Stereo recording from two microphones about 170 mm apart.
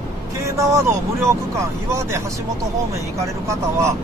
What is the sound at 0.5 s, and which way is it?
Speech, 15° right (ahead or behind).